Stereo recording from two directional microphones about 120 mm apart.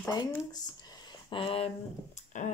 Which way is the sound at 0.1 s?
35° left (ahead or behind).